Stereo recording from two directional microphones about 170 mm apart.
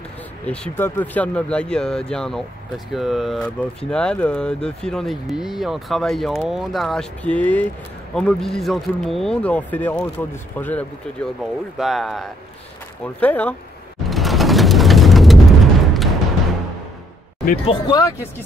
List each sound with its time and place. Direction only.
0.5 s speech: 10° left (ahead or behind)
14.0 s a sound: centre (ahead or behind)
17.6 s speech: 25° left (ahead or behind)